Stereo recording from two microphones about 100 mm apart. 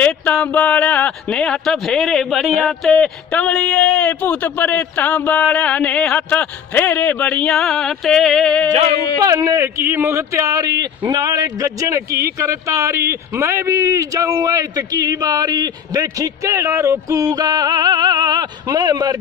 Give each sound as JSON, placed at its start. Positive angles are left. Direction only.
{"t": 0.0, "sound": "a man's voice", "side_deg": 10}
{"t": 3.0, "sound": "a man's voice", "side_deg": 10}
{"t": 6.9, "sound": "music", "side_deg": 15}
{"t": 9.2, "sound": "speech", "side_deg": -35}